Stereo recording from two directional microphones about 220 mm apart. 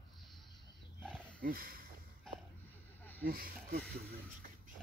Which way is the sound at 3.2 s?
40° right (ahead or behind).